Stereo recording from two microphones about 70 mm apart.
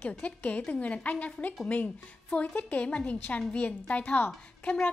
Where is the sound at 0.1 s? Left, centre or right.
Left.